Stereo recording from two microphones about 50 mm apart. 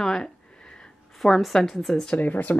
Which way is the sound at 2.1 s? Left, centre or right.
Left.